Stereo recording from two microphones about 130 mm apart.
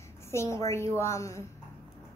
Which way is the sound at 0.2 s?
20° left (ahead or behind).